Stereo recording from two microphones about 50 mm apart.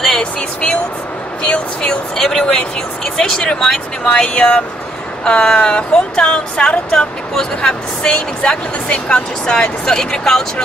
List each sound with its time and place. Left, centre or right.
0.1 s speech: left
2.1 s speech: centre